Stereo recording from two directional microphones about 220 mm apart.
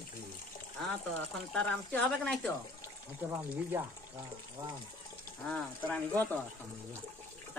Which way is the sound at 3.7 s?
10° right (ahead or behind).